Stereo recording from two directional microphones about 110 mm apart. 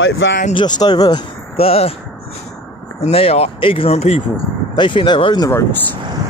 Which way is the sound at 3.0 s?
65° left (ahead or behind).